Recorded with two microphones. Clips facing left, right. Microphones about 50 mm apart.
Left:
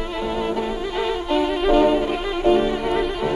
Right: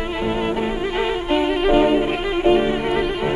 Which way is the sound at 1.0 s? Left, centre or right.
Right.